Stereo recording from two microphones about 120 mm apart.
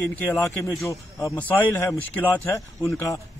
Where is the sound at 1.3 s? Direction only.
15° left (ahead or behind).